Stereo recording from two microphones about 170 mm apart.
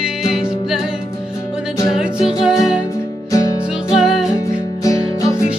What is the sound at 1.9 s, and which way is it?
Music, 5° right (ahead or behind).